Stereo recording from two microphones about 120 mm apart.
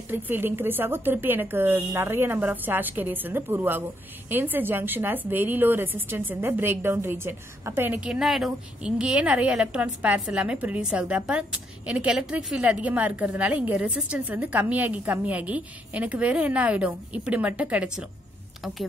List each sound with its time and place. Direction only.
0.1 s a woman's voice: 15° right (ahead or behind)